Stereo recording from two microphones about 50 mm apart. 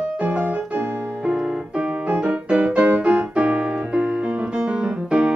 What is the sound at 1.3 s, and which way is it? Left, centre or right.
Keyboard, centre.